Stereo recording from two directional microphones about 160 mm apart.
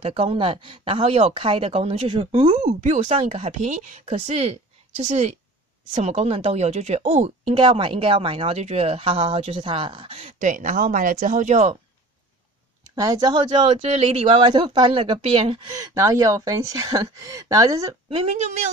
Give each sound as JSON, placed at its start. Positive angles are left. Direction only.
{"t": 0.0, "sound": "speech", "side_deg": -35}
{"t": 2.5, "sound": "a woman's voice", "side_deg": -45}
{"t": 7.5, "sound": "speech", "side_deg": -30}
{"t": 12.9, "sound": "speech", "side_deg": -20}
{"t": 13.7, "sound": "speech", "side_deg": -40}
{"t": 15.8, "sound": "speech", "side_deg": -20}
{"t": 18.1, "sound": "speech", "side_deg": -40}